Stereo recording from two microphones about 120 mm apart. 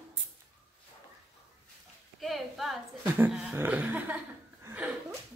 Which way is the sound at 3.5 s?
15° right (ahead or behind).